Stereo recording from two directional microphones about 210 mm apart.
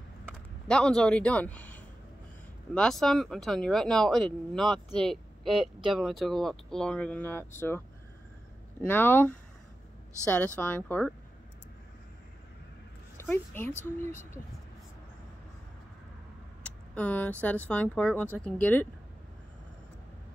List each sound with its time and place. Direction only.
0.7 s speech: 5° left (ahead or behind)
8.8 s speech: 10° left (ahead or behind)
13.2 s speech: 10° left (ahead or behind)
16.6 s speech: 5° left (ahead or behind)